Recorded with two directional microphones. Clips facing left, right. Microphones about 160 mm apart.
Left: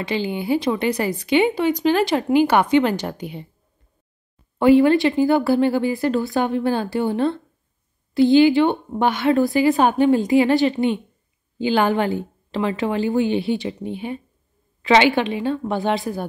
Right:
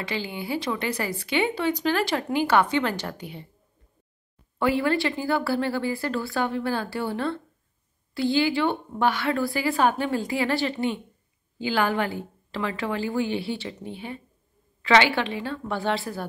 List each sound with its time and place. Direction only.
0.0 s speech: 20° left (ahead or behind)
4.6 s speech: 20° left (ahead or behind)